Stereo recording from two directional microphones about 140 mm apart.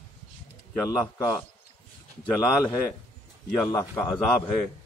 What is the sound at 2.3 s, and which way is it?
A man's voice, 20° left (ahead or behind).